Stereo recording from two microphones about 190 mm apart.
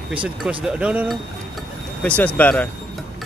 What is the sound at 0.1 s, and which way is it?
Speech, 5° right (ahead or behind).